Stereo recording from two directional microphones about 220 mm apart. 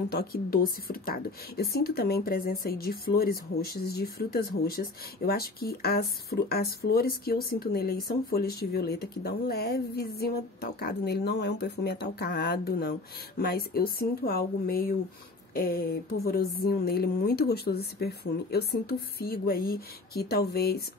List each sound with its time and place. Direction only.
0.1 s speech: 45° left (ahead or behind)